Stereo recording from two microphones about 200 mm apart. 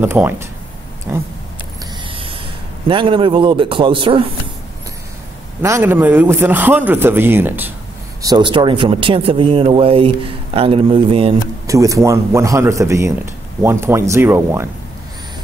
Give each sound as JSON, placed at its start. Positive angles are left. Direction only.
{"t": 0.0, "sound": "a man's voice", "side_deg": -10}
{"t": 2.0, "sound": "spray", "side_deg": -25}
{"t": 2.9, "sound": "speech", "side_deg": -25}
{"t": 5.6, "sound": "a man's voice", "side_deg": -15}
{"t": 8.2, "sound": "speech", "side_deg": -20}
{"t": 11.6, "sound": "a man's voice", "side_deg": -15}